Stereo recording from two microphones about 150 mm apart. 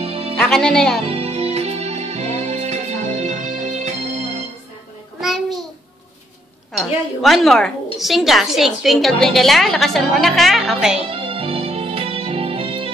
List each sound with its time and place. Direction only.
0.0 s music: 40° right (ahead or behind)
0.4 s speech: 5° left (ahead or behind)
1.0 s music: 40° right (ahead or behind)
5.2 s a sound: centre (ahead or behind)
6.8 s a woman's voice: centre (ahead or behind)
11.1 s music: 35° right (ahead or behind)